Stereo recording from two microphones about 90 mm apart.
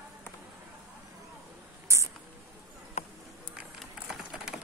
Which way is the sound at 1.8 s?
35° right (ahead or behind).